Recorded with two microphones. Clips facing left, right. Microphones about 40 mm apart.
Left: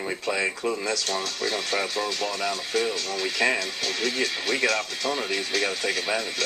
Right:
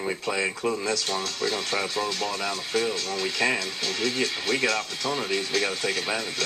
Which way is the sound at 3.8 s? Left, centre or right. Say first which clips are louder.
Right 1 dB; centre.